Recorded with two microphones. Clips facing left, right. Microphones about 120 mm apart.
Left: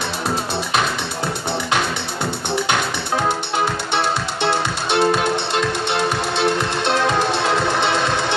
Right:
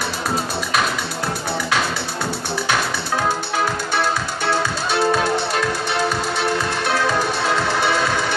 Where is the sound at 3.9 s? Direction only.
20° left (ahead or behind).